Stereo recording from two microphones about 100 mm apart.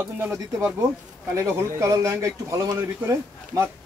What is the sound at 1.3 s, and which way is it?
Speech, 35° right (ahead or behind).